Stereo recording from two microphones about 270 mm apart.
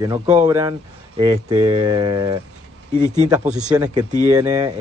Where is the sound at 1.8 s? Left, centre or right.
Centre.